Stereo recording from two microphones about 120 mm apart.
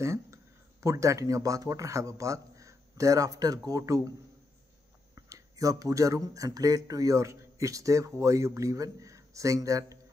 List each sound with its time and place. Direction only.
0.0 s speech: 25° right (ahead or behind)
5.1 s speech: 30° right (ahead or behind)